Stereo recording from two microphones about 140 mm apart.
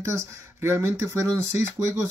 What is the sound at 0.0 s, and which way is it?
Speech, 20° right (ahead or behind).